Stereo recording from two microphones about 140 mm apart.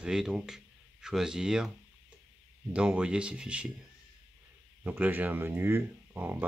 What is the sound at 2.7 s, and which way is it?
Speech, 10° right (ahead or behind).